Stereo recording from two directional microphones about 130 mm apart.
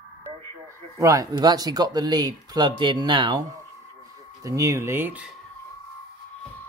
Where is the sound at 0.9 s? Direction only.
25° right (ahead or behind).